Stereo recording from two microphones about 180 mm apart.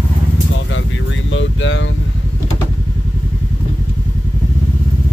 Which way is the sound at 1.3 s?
90° left.